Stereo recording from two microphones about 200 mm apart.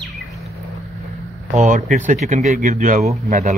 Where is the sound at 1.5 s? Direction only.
40° right (ahead or behind).